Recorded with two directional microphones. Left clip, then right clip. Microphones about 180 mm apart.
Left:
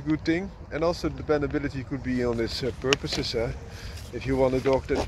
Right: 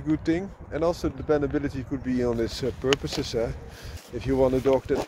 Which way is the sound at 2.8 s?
65° right (ahead or behind).